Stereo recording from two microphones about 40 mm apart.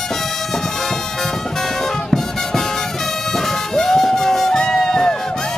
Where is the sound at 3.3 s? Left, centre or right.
Centre.